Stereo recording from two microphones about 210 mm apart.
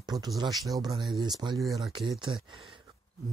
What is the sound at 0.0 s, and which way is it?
Speech, 20° right (ahead or behind).